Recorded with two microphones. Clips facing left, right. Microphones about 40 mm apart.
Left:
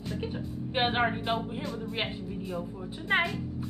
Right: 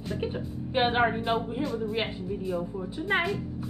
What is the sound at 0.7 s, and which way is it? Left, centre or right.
A woman's voice, centre.